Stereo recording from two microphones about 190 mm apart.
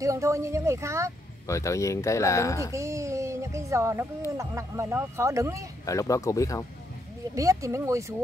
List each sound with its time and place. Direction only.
0.0 s speech: 15° right (ahead or behind)
1.5 s speech: 15° left (ahead or behind)
2.7 s speech: 15° right (ahead or behind)
5.9 s speech: 15° left (ahead or behind)
7.3 s speech: 15° right (ahead or behind)